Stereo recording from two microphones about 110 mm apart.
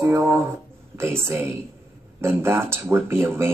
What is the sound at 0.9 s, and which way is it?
Speech, 25° right (ahead or behind).